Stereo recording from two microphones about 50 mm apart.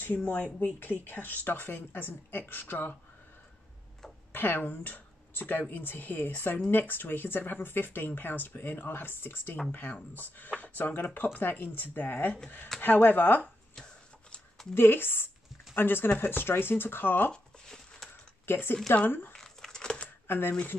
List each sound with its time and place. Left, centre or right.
0.0 s speech: left
4.3 s speech: left
9.7 s speech: left
14.7 s speech: left
17.3 s a sound: centre
18.4 s speech: left
19.3 s crumpling: centre
20.2 s speech: left